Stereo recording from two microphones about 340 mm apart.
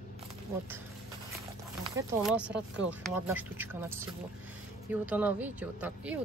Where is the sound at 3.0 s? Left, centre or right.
Centre.